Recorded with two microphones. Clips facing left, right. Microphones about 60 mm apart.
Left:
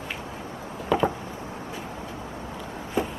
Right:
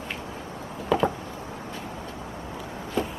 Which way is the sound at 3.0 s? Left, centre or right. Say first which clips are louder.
Left 1 dB; centre.